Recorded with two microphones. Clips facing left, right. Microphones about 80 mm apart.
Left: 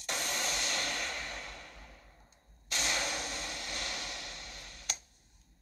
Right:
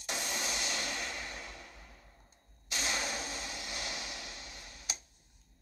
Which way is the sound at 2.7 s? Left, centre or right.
Centre.